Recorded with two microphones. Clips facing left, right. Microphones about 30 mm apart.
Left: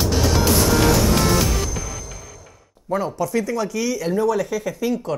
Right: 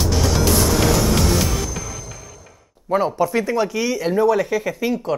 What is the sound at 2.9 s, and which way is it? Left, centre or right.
Speech, right.